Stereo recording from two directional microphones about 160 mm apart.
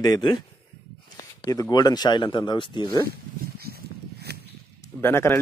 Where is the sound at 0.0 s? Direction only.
25° left (ahead or behind).